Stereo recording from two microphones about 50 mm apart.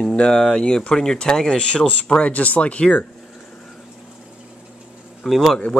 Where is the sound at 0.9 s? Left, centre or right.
Centre.